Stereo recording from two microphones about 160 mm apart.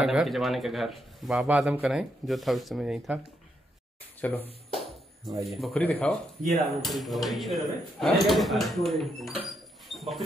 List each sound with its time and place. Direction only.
0.0 s speech: 5° right (ahead or behind)
4.2 s speech: 10° left (ahead or behind)
4.7 s music: centre (ahead or behind)
5.5 s speech: centre (ahead or behind)